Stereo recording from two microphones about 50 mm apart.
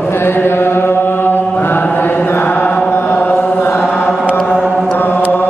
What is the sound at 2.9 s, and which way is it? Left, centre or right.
Chant, left.